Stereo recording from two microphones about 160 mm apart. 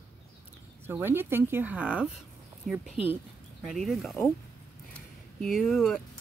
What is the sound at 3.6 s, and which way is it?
Speech, centre (ahead or behind).